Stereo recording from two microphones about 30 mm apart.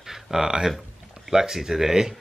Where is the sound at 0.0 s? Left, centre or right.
Centre.